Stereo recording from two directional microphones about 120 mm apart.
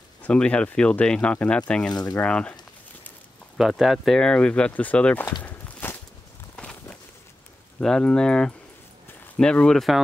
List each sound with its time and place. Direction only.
0.2 s speech: 10° left (ahead or behind)
1.9 s speech: 35° left (ahead or behind)
2.1 s speech: 10° left (ahead or behind)
3.5 s speech: 5° right (ahead or behind); by 5.3 s 15° left (ahead or behind)
5.4 s walk: 15° left (ahead or behind)
7.8 s speech: 5° left (ahead or behind)